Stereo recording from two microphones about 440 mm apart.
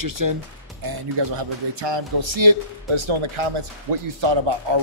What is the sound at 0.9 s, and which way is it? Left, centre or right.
Speech, right.